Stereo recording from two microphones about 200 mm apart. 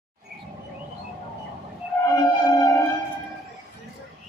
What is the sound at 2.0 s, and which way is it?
Music, 15° left (ahead or behind).